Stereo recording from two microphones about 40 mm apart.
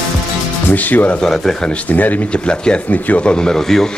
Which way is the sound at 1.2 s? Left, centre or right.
Centre.